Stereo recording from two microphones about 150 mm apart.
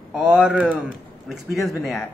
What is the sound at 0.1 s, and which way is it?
A man's voice, 5° right (ahead or behind).